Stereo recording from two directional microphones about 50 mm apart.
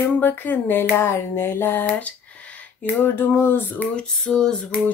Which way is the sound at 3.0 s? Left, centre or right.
Left.